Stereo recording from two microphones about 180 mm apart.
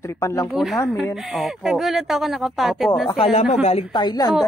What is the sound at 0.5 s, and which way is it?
Speech, centre (ahead or behind).